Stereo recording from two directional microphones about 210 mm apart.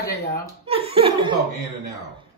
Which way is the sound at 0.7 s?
25° right (ahead or behind).